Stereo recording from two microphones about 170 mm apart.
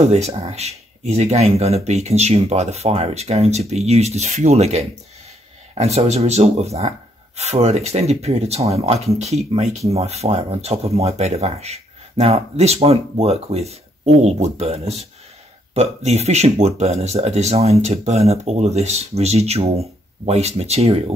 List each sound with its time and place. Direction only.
0.1 s speech: 40° right (ahead or behind)